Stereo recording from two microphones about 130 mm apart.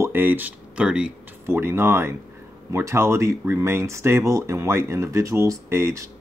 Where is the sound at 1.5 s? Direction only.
20° right (ahead or behind).